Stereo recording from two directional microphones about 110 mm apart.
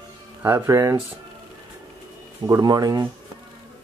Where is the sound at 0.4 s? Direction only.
25° right (ahead or behind).